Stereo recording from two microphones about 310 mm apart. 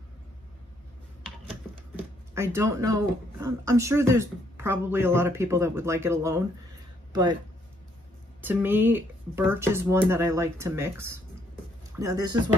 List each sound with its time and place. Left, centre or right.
2.3 s speech: centre
7.1 s a sound: centre
8.4 s speech: centre